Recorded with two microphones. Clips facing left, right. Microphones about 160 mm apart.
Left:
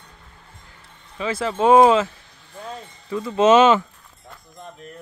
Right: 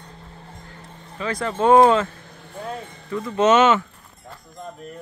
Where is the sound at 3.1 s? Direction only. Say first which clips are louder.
Left 1 dB; 15° left (ahead or behind).